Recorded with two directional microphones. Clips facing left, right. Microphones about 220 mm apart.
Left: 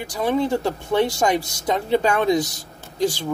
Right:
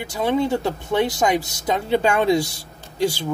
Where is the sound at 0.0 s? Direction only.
25° right (ahead or behind).